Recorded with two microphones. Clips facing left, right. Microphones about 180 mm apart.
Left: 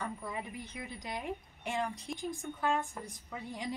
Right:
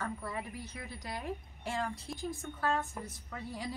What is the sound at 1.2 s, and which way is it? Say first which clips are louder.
A woman's voice: even; 20° left (ahead or behind).